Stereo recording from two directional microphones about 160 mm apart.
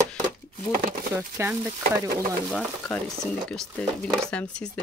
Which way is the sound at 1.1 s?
15° right (ahead or behind).